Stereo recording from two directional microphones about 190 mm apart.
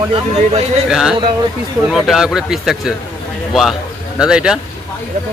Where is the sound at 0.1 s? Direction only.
30° right (ahead or behind).